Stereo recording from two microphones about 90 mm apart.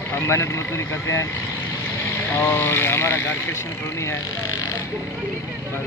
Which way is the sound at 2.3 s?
25° left (ahead or behind).